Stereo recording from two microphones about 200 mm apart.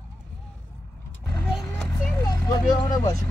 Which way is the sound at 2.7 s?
20° left (ahead or behind).